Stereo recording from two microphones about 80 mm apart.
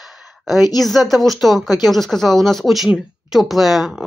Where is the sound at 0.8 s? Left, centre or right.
Centre.